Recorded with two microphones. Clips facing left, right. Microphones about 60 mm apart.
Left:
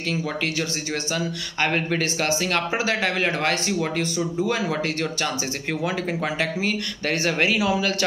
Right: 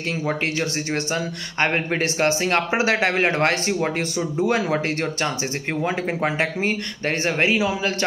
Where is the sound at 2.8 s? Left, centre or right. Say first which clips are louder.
Right 3 dB; right.